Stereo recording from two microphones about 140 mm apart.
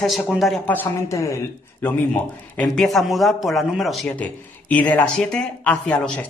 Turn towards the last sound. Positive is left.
turn(degrees=5)  # may be behind; listen again after turning